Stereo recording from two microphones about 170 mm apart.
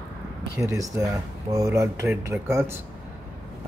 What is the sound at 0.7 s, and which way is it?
Speech, 20° right (ahead or behind).